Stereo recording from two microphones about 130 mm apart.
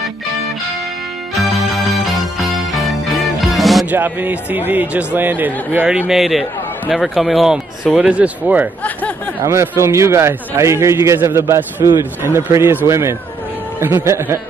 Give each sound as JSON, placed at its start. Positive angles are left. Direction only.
{"t": 2.4, "sound": "music", "side_deg": 0}
{"t": 3.8, "sound": "speech", "side_deg": -15}
{"t": 9.4, "sound": "a man's voice", "side_deg": -20}